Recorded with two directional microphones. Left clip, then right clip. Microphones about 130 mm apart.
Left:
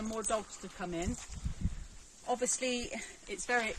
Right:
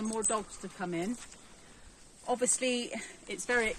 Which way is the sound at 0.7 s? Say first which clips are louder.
Right 3 dB; 90° left.